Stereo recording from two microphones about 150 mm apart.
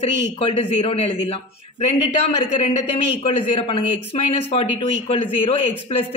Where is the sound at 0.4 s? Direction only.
40° left (ahead or behind).